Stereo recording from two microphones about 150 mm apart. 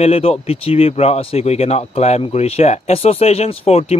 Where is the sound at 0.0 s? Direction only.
40° left (ahead or behind).